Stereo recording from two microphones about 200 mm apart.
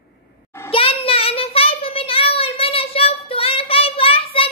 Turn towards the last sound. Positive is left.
turn(degrees=30)  # may be behind; listen again after turning